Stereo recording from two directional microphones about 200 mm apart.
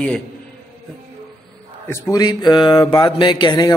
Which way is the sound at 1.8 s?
15° left (ahead or behind).